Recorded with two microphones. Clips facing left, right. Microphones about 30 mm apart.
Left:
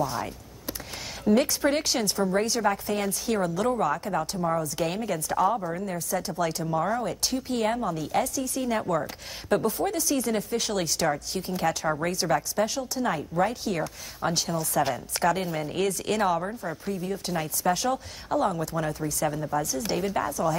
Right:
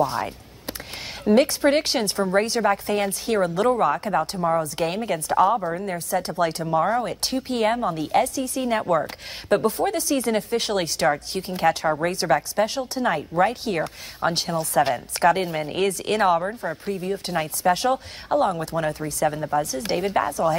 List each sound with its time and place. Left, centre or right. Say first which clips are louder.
0.0 s a sound: right 6 dB; right
1.2 s a woman's voice: right 5 dB; right
16.3 s speech: right 5 dB; right
16.8 s a woman's voice: right 3 dB; right